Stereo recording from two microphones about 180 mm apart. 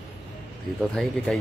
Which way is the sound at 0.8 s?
Centre (ahead or behind).